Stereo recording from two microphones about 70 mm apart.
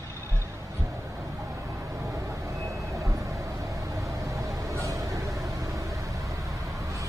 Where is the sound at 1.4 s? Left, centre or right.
Right.